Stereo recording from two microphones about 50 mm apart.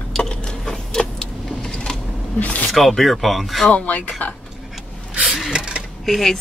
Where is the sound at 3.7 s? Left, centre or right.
Left.